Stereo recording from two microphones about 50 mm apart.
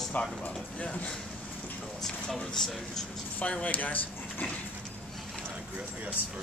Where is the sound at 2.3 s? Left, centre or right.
Centre.